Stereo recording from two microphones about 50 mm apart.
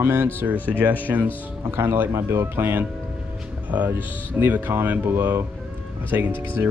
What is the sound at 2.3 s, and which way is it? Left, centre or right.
Speech, right.